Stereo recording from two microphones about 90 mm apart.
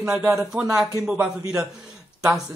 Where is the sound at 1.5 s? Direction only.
10° right (ahead or behind).